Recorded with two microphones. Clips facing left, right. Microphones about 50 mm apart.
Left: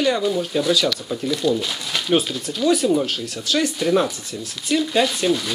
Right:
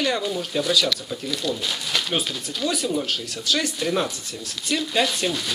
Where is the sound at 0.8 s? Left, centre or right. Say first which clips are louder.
Left 4 dB; left.